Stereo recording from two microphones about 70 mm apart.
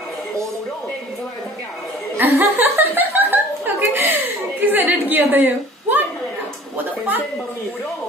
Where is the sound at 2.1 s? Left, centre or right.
Right.